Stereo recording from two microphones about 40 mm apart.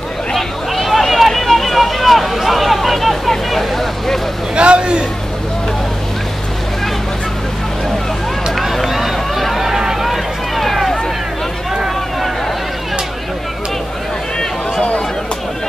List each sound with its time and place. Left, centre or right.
0.3 s a sound: centre
4.6 s hubbub: right
8.5 s run: centre
10.0 s run: centre